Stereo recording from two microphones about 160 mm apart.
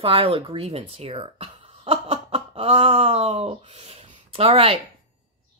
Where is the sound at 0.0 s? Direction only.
35° right (ahead or behind).